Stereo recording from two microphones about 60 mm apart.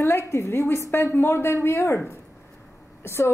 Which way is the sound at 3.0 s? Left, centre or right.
Left.